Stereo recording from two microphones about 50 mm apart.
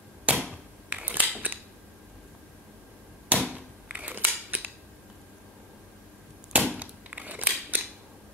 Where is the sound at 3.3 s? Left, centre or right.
Right.